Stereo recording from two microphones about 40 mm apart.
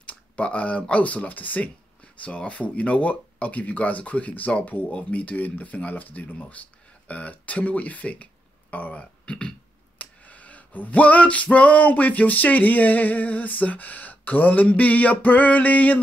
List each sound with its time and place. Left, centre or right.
0.0 s speech: left
2.2 s speech: left
9.2 s speech: left
9.9 s male singing: left